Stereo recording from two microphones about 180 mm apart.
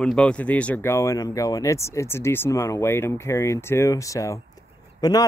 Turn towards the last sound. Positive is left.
turn(degrees=20)  # may be behind; listen again after turning